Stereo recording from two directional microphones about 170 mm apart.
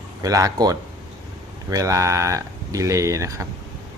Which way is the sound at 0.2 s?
20° right (ahead or behind).